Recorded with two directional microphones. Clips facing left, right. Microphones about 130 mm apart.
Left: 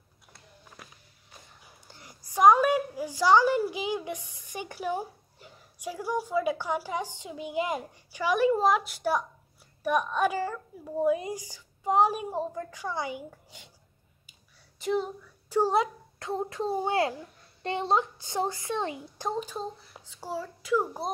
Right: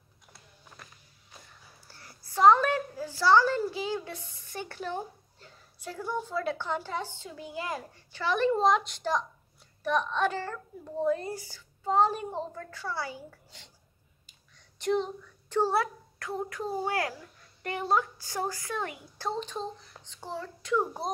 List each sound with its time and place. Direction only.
1.9 s a woman's voice: 15° left (ahead or behind)
14.8 s a woman's voice: 5° left (ahead or behind)